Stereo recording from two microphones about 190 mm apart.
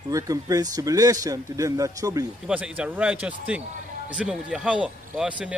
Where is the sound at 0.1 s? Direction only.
20° right (ahead or behind).